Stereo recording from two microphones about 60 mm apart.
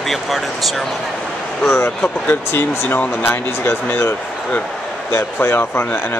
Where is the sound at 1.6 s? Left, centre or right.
Left.